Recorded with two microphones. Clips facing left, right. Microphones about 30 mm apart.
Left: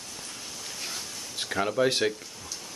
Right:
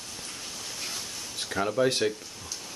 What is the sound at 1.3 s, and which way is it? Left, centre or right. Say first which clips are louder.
Speech: left 1 dB; centre.